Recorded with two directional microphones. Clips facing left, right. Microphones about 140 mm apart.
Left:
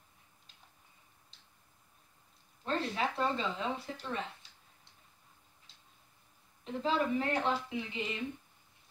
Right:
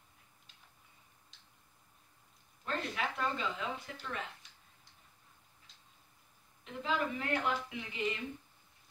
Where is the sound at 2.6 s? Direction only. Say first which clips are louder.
Left 4 dB; 30° left (ahead or behind).